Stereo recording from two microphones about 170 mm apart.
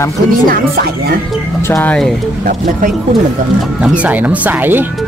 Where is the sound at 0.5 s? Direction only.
65° right (ahead or behind).